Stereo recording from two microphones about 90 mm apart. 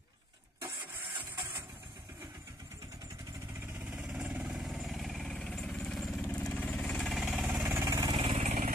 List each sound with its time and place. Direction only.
1.1 s printer: 25° right (ahead or behind)
3.9 s vehicle: 5° right (ahead or behind)
6.2 s vehicle: 15° left (ahead or behind); by 7.4 s 5° right (ahead or behind)
7.8 s vehicle: 40° right (ahead or behind)
8.1 s vehicle: 90° right